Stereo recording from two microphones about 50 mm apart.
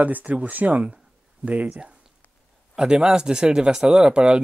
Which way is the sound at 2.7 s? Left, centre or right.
Centre.